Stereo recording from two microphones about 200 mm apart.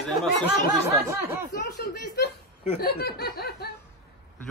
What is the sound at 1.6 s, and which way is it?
Laughter, 55° left (ahead or behind).